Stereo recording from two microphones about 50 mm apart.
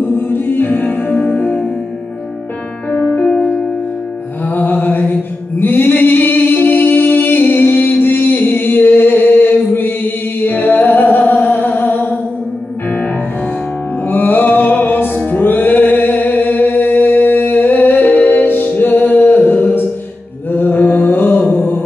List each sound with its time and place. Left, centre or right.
0.0 s music: left
2.9 s music: left
4.5 s mantra: left
14.0 s music: left
20.5 s mantra: left
21.5 s music: left